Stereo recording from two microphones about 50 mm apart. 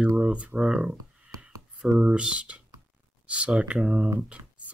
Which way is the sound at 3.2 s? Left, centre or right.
Right.